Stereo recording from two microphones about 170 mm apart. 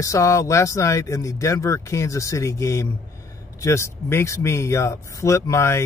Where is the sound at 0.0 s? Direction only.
20° left (ahead or behind).